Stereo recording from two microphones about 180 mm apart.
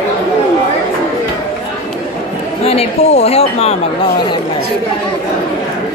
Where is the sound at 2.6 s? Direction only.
35° left (ahead or behind).